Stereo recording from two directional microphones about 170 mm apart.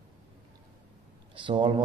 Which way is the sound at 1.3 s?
30° right (ahead or behind).